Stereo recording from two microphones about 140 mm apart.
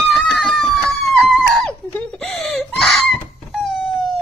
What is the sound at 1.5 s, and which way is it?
Screaming, 5° left (ahead or behind).